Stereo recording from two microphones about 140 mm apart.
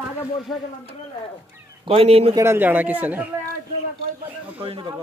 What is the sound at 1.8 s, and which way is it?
Speech, 45° right (ahead or behind).